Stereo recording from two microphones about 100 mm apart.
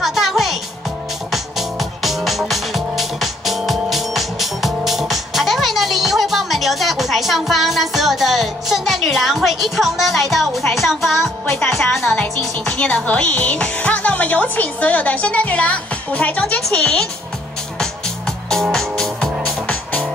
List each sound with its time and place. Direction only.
0.0 s music: centre (ahead or behind)
10.7 s a woman's voice: centre (ahead or behind)
12.2 s music: 15° left (ahead or behind)
19.6 s music: 15° left (ahead or behind)